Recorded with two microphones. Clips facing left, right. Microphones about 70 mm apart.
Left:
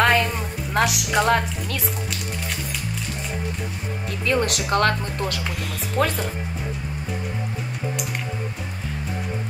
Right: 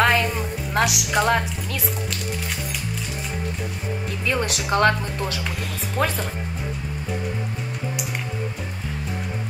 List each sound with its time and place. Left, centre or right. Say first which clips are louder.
0.0 s music: left 1 dB; centre
0.7 s a woman's voice: left 1 dB; centre
4.3 s speech: left 2 dB; centre